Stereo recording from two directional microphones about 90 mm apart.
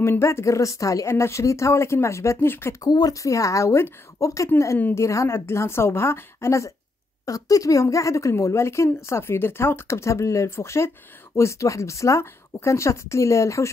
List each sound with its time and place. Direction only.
0.0 s speech: 30° left (ahead or behind)
2.8 s speech: 45° left (ahead or behind)
4.7 s a woman's voice: 20° left (ahead or behind)
5.0 s a woman's voice: 35° left (ahead or behind)